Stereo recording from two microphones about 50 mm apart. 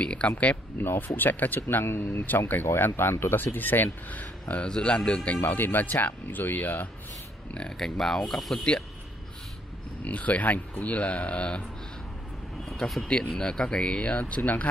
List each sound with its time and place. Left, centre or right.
0.0 s speech: left
0.7 s speech: left
4.6 s speech: centre
5.4 s speech: left
7.7 s speech: centre
10.0 s speech: left
12.6 s a sound: centre
13.3 s speech: centre; by 14.7 s left